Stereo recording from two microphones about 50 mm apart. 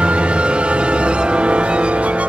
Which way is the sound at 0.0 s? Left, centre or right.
Right.